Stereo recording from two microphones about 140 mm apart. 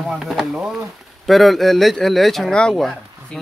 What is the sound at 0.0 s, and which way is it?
Speech, centre (ahead or behind).